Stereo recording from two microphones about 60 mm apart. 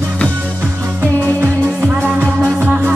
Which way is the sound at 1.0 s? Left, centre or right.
Right.